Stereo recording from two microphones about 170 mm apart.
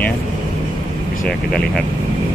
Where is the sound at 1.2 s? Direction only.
5° left (ahead or behind).